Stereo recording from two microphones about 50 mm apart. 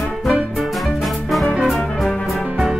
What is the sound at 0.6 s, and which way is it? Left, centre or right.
Music, centre.